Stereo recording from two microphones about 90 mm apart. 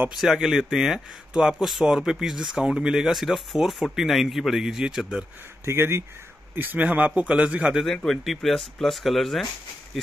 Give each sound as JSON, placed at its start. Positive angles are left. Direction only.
{"t": 0.2, "sound": "speech", "side_deg": -5}
{"t": 5.7, "sound": "a man's voice", "side_deg": -30}
{"t": 7.8, "sound": "speech", "side_deg": 5}